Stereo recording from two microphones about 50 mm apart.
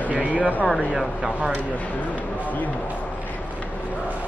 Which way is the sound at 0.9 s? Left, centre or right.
Centre.